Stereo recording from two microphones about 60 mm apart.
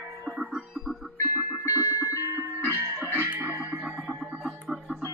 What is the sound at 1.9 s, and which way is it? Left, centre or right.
Music, right.